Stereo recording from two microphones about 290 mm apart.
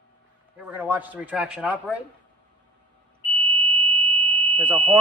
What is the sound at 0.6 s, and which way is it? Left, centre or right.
A man's voice, centre.